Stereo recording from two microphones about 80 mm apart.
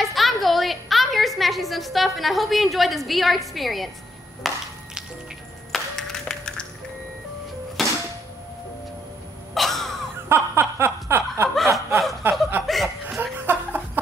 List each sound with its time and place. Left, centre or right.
0.0 s a sound: centre
5.7 s music: centre
7.8 s a sound: centre
9.5 s cough: centre
10.2 s snicker: right
12.2 s chuckle: right
12.6 s chuckle: centre
13.2 s chuckle: right